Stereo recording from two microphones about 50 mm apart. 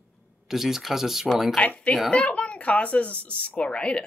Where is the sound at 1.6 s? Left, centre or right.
Left.